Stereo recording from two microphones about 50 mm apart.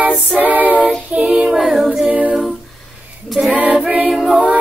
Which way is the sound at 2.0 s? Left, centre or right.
Right.